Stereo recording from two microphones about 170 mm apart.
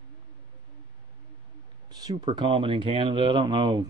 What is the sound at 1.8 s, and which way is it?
Speech, 25° right (ahead or behind).